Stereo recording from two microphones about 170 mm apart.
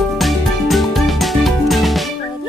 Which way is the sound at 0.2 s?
Centre (ahead or behind).